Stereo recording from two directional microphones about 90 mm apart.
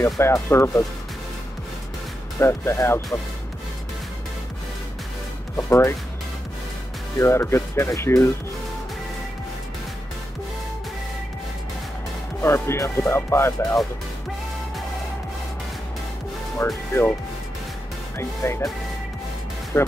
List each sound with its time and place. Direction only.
0.0 s speech: 30° left (ahead or behind)
2.3 s speech: 30° left (ahead or behind)
5.6 s speech: 35° left (ahead or behind)
7.2 s speech: 30° left (ahead or behind)
12.4 s speech: 30° left (ahead or behind)
16.5 s speech: 30° left (ahead or behind)
18.1 s speech: 30° left (ahead or behind)
19.7 s speech: 30° left (ahead or behind)